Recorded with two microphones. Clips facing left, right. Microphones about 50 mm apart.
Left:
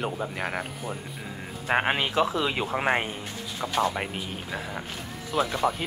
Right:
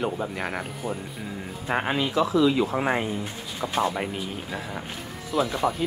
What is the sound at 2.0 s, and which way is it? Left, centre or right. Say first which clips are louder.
Speech: right 3 dB; left.